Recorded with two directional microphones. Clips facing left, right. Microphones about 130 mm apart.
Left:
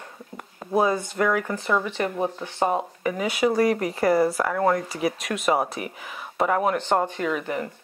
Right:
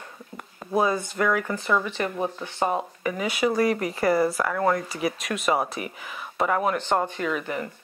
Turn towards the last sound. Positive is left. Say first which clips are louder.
# left 1 dB
turn(degrees=35)  # may be behind; listen again after turning